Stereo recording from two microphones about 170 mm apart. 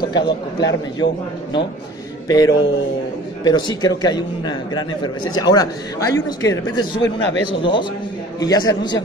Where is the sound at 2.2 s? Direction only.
20° left (ahead or behind).